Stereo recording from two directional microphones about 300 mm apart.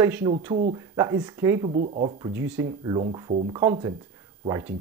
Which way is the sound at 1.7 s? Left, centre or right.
Right.